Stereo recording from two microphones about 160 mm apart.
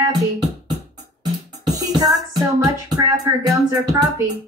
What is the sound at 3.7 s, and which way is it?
Speech, 20° right (ahead or behind).